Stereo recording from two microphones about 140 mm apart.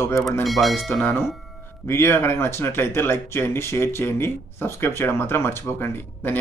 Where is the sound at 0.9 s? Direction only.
10° left (ahead or behind).